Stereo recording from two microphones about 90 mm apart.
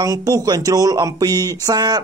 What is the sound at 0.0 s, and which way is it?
Speech, 40° right (ahead or behind).